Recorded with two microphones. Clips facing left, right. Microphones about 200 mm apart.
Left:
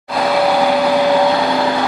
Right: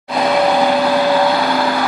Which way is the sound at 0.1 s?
5° left (ahead or behind).